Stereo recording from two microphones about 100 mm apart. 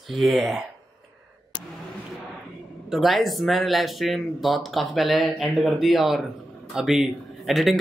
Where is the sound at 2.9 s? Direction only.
Centre (ahead or behind).